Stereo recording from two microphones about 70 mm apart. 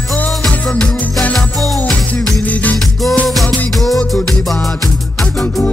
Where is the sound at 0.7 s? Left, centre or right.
Centre.